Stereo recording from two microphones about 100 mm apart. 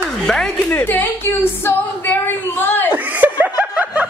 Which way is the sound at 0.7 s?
20° left (ahead or behind).